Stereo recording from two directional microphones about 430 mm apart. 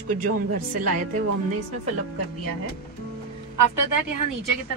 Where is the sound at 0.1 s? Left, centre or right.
Centre.